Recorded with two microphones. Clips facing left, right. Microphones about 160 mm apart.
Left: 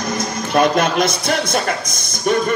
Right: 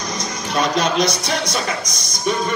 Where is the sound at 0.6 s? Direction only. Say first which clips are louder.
Left 3 dB; 55° left (ahead or behind).